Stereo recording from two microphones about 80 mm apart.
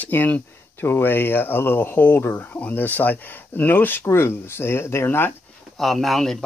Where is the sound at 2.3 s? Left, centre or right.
Centre.